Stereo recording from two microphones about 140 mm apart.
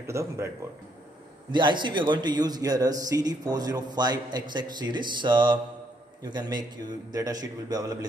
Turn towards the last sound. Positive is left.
turn(degrees=-30)  # may be behind; listen again after turning